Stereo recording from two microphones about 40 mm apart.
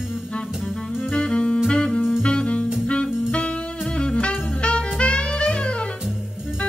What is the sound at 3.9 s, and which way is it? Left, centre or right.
Music, left.